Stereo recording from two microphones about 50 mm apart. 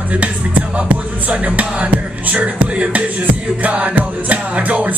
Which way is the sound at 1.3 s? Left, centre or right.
Right.